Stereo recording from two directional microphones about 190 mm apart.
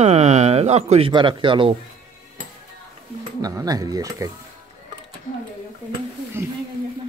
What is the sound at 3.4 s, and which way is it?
Speech, 20° right (ahead or behind).